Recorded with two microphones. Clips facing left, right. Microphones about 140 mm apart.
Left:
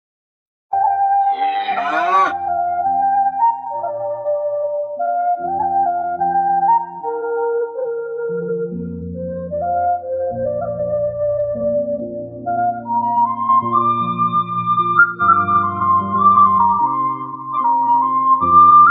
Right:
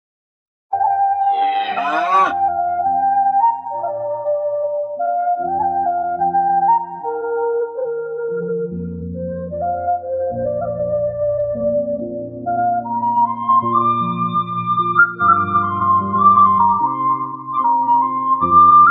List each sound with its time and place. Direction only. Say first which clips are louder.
0.7 s cattle: left 1 dB; centre (ahead or behind)
5.8 s music: left 1 dB; centre (ahead or behind)
10.2 s music: even; centre (ahead or behind)